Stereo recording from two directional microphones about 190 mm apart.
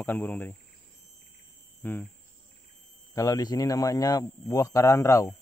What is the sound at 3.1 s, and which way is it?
Speech, 20° left (ahead or behind).